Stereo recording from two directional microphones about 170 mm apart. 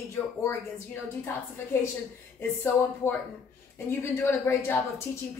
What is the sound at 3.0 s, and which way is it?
Speech, 15° left (ahead or behind).